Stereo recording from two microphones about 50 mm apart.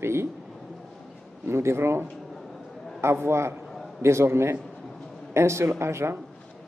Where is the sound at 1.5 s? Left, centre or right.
Right.